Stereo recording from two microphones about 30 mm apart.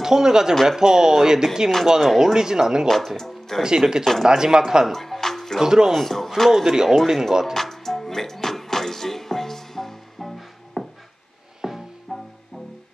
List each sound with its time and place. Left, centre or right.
0.0 s speech: centre
2.0 s speech: centre
2.3 s speech: right
3.2 s speech: centre
3.6 s speech: right
4.9 s music: centre
5.6 s speech: centre
5.9 s speech: centre
6.5 s speech: centre
7.5 s music: centre
11.6 s music: centre
12.1 s music: centre